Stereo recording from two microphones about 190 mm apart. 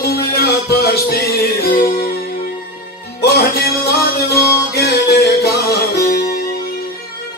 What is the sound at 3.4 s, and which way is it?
Music, 55° left (ahead or behind).